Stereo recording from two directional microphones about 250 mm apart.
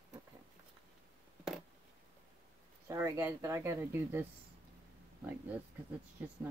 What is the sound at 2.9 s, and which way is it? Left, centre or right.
Speech, centre.